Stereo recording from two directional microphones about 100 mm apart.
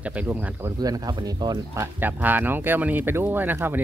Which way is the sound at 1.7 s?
30° right (ahead or behind).